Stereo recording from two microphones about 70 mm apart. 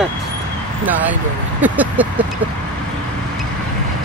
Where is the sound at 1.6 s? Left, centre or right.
Right.